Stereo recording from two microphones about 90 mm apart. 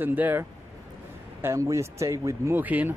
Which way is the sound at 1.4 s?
35° right (ahead or behind).